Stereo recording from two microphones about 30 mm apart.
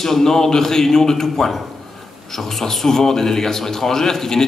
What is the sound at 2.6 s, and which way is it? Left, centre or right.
A man's voice, centre.